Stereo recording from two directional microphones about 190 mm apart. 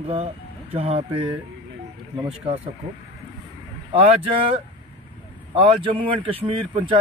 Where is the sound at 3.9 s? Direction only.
30° right (ahead or behind).